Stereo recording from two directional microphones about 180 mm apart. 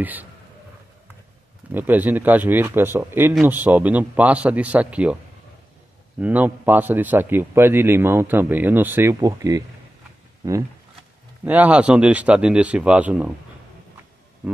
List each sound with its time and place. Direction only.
0.0 s a man's voice: 10° right (ahead or behind)
1.7 s a man's voice: 10° right (ahead or behind)
11.4 s a man's voice: 10° right (ahead or behind)